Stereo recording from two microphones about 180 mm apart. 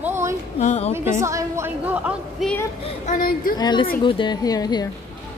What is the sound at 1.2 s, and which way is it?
Speech, 15° right (ahead or behind).